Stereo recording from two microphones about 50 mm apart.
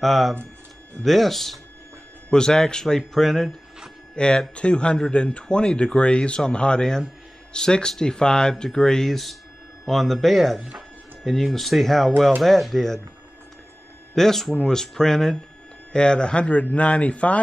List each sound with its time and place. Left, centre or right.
0.0 s a man's voice: centre
4.1 s a man's voice: centre
14.1 s speech: centre; by 17.4 s left